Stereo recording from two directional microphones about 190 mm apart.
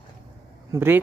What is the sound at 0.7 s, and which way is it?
Speech, 10° right (ahead or behind).